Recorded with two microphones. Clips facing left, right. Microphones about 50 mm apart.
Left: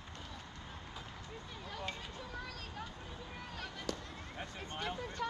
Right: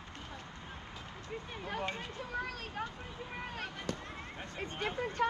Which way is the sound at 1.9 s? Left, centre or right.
Right.